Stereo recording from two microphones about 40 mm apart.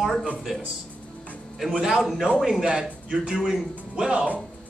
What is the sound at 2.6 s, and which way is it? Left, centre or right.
Speech, centre.